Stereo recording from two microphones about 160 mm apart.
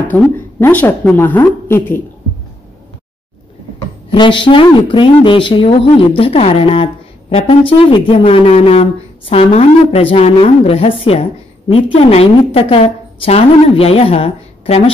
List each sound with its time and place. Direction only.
0.1 s a woman's voice: 10° left (ahead or behind)
4.1 s a woman's voice: 30° left (ahead or behind)